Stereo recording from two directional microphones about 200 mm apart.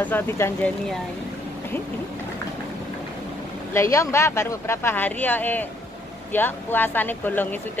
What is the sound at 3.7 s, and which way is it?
Speech, 15° left (ahead or behind).